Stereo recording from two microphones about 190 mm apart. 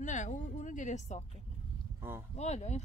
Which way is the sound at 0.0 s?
40° left (ahead or behind).